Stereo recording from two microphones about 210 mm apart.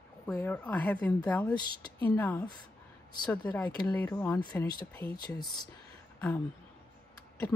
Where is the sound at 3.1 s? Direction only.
20° left (ahead or behind).